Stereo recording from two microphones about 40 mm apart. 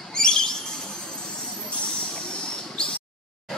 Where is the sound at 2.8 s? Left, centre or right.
Left.